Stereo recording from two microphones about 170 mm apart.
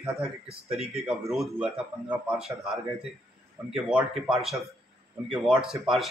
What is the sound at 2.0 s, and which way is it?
Speech, 5° right (ahead or behind).